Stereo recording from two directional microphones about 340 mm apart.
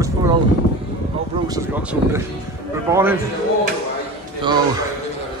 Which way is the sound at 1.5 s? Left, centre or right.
Centre.